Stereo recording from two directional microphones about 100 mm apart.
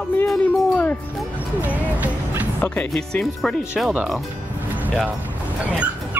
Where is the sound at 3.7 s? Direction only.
10° right (ahead or behind).